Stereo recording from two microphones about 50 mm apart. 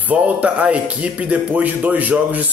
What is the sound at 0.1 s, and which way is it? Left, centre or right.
A man's voice, right.